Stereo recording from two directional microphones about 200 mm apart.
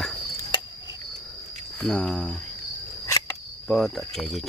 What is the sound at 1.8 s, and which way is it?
Speech, 5° left (ahead or behind).